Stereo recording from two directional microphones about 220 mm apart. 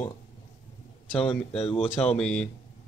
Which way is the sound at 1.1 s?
25° left (ahead or behind).